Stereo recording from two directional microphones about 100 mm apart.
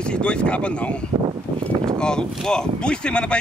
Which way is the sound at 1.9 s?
10° left (ahead or behind).